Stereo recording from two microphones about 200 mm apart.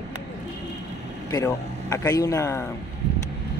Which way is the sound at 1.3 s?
15° left (ahead or behind).